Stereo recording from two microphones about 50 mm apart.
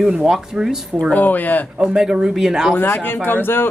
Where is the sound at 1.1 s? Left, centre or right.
Left.